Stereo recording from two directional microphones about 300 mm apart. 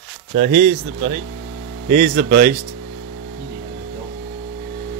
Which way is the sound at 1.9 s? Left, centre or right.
Right.